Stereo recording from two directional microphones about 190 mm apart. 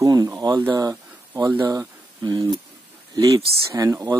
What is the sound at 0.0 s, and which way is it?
Speech, 15° right (ahead or behind).